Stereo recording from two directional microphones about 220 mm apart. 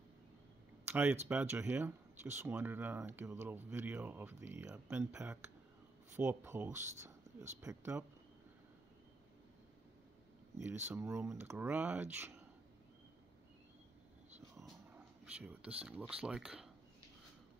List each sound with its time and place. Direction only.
0.8 s speech: 10° right (ahead or behind)
10.9 s speech: 10° right (ahead or behind)
15.2 s speech: 5° right (ahead or behind)